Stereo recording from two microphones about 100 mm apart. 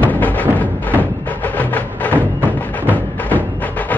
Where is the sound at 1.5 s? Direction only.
15° left (ahead or behind).